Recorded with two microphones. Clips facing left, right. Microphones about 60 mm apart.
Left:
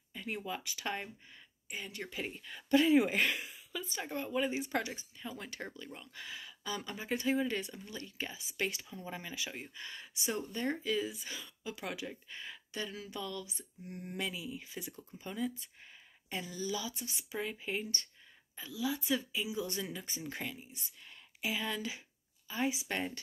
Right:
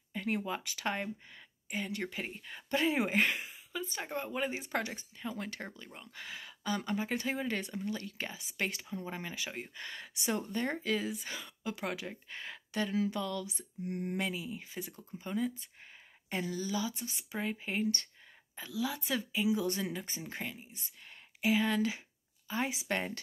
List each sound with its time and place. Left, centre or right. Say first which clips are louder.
0.1 s a sound: right 6 dB; right
0.5 s speech: right 3 dB; right
1.3 s speech: right 5 dB; right
2.1 s speech: even; right
9.8 s speech: right 2 dB; right
10.3 s speech: right 2 dB; right
10.8 s speech: right 1 dB; right
11.8 s speech: right 1 dB; right
14.1 s speech: right 3 dB; right
16.3 s speech: right 3 dB; right
18.7 s speech: even; right
19.7 s speech: right 3 dB; right
20.2 s speech: even; right
21.1 s speech: right 7 dB; right